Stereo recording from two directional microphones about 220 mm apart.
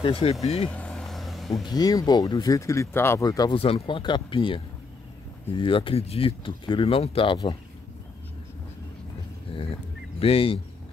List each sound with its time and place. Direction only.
0.0 s speech: 25° left (ahead or behind)
0.7 s vehicle: 5° left (ahead or behind)
1.7 s speech: 15° left (ahead or behind)
9.5 s speech: 25° left (ahead or behind)